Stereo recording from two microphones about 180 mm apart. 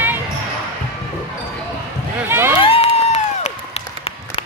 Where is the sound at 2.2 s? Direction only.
10° right (ahead or behind).